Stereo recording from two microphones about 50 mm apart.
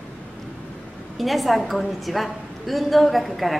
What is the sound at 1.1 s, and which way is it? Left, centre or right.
A woman's voice, centre.